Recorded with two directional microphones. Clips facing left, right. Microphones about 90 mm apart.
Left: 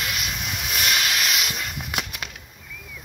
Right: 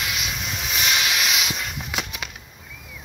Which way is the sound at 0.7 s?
Centre (ahead or behind).